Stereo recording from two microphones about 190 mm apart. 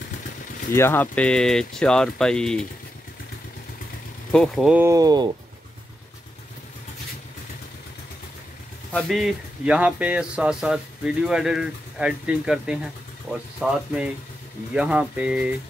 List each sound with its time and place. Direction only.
0.7 s speech: 10° left (ahead or behind)
4.3 s speech: centre (ahead or behind)
4.8 s speech: 20° right (ahead or behind)
8.9 s speech: centre (ahead or behind)